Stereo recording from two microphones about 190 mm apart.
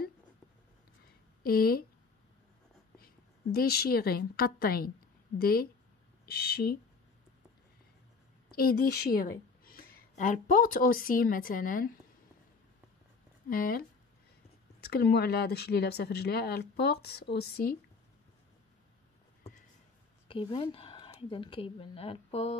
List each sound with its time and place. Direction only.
1.4 s a woman's voice: 50° left (ahead or behind)
3.5 s a woman's voice: 55° left (ahead or behind)
8.5 s a woman's voice: 50° left (ahead or behind)
13.5 s a woman's voice: 50° left (ahead or behind)
20.2 s speech: 30° left (ahead or behind)